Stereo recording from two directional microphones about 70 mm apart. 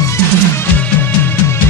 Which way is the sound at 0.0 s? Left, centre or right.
Left.